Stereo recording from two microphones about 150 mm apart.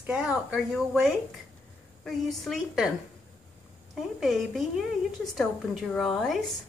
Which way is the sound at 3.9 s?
Centre (ahead or behind).